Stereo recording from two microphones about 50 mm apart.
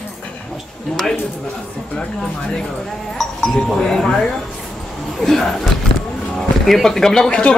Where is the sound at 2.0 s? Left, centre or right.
Centre.